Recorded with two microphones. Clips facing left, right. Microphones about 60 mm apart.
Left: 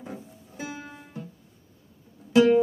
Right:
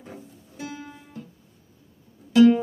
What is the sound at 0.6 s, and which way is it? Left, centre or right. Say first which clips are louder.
Music: even; centre.